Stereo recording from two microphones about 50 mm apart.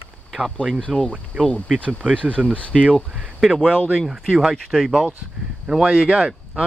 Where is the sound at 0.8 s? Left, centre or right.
Centre.